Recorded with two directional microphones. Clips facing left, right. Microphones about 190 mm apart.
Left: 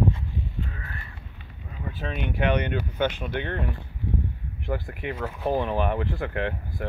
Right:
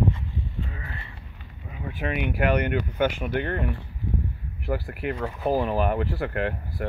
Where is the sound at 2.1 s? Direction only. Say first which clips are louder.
Right 1 dB; 5° right (ahead or behind).